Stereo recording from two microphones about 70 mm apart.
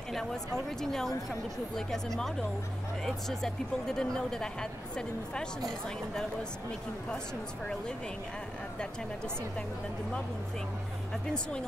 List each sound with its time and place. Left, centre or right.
0.7 s speech: centre